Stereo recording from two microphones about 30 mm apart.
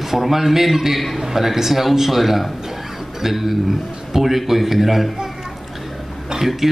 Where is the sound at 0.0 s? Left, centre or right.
Centre.